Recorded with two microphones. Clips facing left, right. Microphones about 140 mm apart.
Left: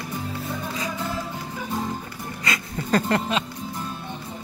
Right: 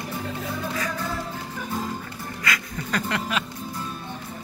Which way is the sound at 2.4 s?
30° left (ahead or behind).